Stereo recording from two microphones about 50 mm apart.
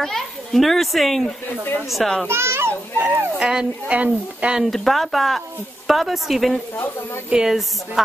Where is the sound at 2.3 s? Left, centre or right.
Right.